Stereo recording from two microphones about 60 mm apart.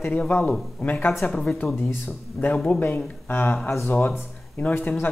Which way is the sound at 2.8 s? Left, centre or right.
Left.